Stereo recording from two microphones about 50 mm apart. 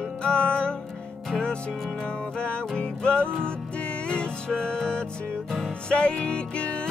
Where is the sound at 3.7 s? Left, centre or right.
Left.